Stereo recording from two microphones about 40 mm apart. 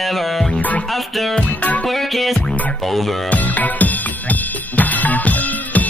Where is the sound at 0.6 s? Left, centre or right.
Left.